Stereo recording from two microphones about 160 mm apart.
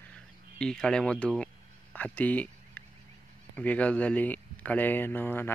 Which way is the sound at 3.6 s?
10° left (ahead or behind).